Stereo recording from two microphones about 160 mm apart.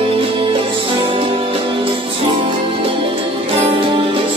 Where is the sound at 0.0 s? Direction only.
35° right (ahead or behind).